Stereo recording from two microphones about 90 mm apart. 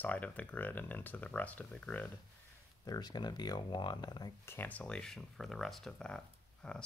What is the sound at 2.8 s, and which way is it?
Speech, 45° left (ahead or behind).